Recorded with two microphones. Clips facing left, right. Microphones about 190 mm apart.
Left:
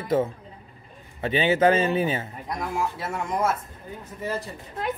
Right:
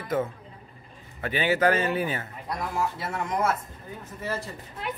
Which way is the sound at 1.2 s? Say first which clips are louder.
Left 3 dB; 25° left (ahead or behind).